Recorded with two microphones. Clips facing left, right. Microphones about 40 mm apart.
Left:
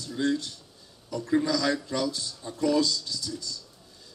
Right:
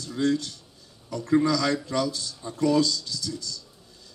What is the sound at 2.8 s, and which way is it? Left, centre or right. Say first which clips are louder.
Speech: right 2 dB; left.